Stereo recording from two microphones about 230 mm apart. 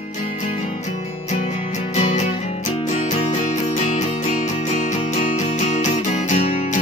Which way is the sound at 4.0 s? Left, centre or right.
Left.